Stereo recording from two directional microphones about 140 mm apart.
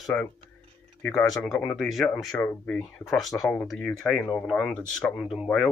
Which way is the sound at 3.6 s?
5° left (ahead or behind).